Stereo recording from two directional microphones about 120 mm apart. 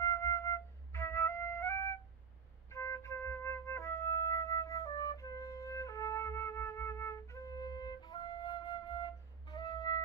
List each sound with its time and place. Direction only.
0.0 s flute: 25° left (ahead or behind)